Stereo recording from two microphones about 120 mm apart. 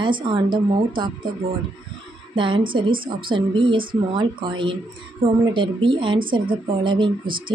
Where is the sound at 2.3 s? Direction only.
45° right (ahead or behind).